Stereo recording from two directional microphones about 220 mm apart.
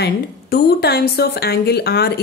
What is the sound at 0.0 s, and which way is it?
A woman's voice, 45° left (ahead or behind).